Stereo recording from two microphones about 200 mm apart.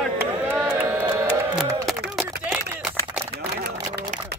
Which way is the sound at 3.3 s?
55° right (ahead or behind).